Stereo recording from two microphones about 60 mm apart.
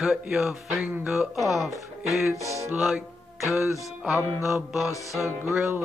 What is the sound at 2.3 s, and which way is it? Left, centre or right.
Music, left.